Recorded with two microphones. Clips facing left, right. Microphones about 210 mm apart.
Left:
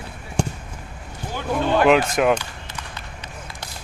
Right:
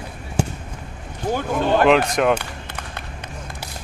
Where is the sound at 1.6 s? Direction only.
45° right (ahead or behind).